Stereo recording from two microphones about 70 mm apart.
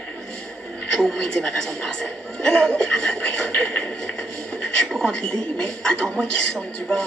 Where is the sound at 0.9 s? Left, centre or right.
Centre.